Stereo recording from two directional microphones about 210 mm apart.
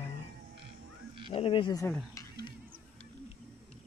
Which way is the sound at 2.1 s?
20° left (ahead or behind).